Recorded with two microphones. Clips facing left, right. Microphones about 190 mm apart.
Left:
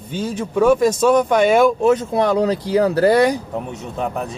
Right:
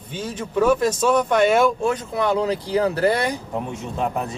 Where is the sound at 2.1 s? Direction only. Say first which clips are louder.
Left 4 dB; 40° left (ahead or behind).